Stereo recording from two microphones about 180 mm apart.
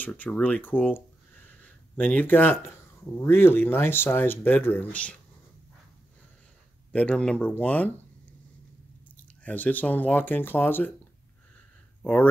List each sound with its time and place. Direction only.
0.0 s speech: 5° left (ahead or behind)
6.9 s speech: 5° left (ahead or behind)
9.1 s speech: 10° left (ahead or behind)
12.0 s speech: 5° left (ahead or behind)